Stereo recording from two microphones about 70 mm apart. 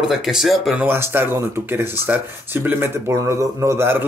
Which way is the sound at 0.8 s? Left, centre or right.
Right.